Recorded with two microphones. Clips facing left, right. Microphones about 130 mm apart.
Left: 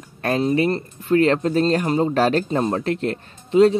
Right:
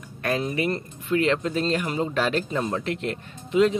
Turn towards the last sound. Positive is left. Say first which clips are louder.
# left 6 dB
turn(degrees=35)  # may be behind; listen again after turning